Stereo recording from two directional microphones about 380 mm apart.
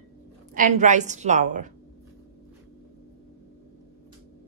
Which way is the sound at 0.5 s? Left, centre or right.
Centre.